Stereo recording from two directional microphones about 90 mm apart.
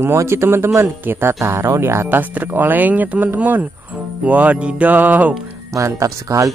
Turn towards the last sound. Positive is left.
turn(degrees=-35)  # may be behind; listen again after turning